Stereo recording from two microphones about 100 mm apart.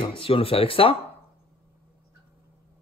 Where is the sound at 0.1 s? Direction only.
65° left (ahead or behind).